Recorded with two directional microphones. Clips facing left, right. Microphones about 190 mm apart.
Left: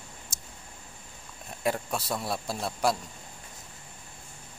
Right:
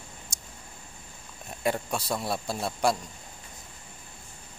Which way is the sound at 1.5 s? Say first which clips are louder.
Right 1 dB; centre (ahead or behind).